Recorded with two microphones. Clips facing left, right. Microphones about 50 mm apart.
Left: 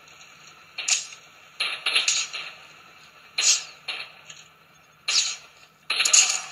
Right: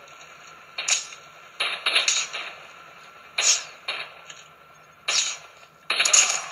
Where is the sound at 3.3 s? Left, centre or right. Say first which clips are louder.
Right 1 dB; right.